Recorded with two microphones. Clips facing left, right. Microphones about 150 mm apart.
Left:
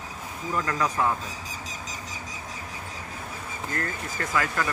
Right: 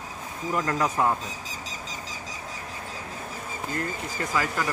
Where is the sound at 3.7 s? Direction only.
15° right (ahead or behind).